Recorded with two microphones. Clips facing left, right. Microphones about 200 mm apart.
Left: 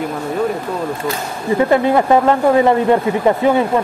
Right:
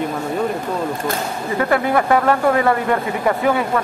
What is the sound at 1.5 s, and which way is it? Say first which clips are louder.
Speech: left 4 dB; 25° left (ahead or behind).